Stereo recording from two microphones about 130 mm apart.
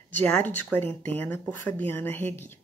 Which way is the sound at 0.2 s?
15° left (ahead or behind).